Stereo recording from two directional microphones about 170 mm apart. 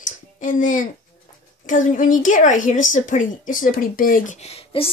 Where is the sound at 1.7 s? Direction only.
50° left (ahead or behind).